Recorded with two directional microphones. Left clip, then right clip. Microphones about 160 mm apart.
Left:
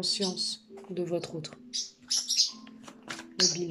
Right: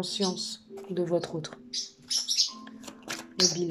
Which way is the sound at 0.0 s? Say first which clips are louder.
Left 1 dB; 10° left (ahead or behind).